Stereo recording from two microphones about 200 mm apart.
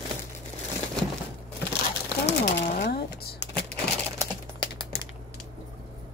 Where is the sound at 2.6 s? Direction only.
40° left (ahead or behind).